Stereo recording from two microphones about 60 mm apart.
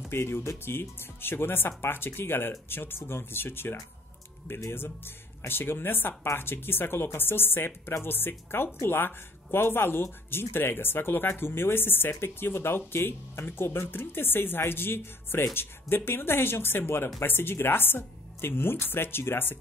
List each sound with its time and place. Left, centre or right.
0.1 s speech: left